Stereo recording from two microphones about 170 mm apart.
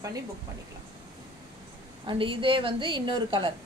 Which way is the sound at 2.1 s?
30° right (ahead or behind).